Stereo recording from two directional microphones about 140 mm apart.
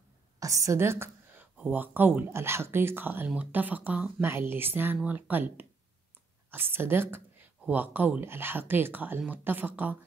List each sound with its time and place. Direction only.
0.4 s a woman's voice: 25° right (ahead or behind)